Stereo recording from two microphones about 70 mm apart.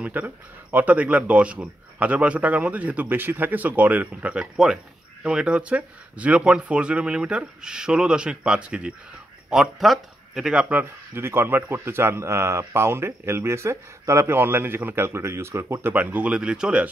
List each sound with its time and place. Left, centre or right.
0.0 s speech: right
9.5 s speech: centre
10.7 s speech: right
15.9 s speech: right